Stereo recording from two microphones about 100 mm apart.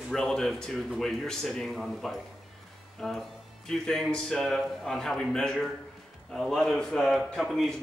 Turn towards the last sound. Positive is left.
turn(degrees=0)  # may be behind; listen again after turning